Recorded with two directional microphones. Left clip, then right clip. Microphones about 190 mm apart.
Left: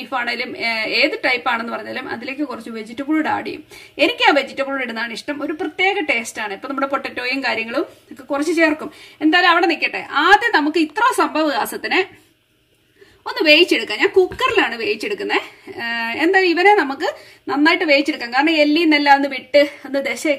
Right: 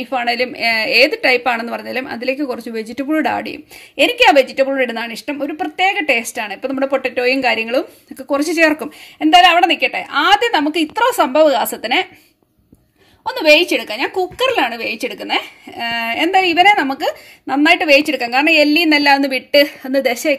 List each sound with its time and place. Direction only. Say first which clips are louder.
0.0 s a woman's voice: right 5 dB; 35° right (ahead or behind)
13.2 s a woman's voice: right 2 dB; 25° right (ahead or behind); by 20.3 s 45° right (ahead or behind)